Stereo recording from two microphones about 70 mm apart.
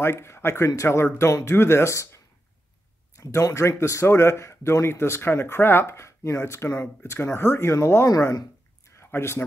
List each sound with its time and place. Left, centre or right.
0.0 s speech: left
8.1 s speech: left
8.8 s a sound: left